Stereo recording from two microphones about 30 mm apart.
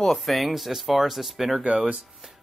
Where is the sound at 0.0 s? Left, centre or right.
Centre.